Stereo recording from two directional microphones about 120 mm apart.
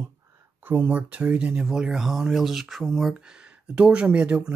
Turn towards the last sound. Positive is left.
turn(degrees=-10)  # may be behind; listen again after turning